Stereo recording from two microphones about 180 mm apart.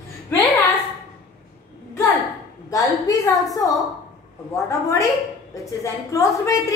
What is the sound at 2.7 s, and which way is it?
Speech, 20° left (ahead or behind).